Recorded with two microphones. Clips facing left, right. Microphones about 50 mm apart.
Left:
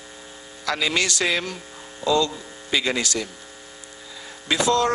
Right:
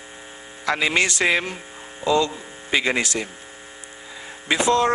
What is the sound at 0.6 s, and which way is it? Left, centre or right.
A man's voice, right.